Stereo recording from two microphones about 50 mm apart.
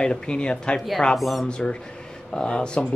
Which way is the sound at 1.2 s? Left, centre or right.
Centre.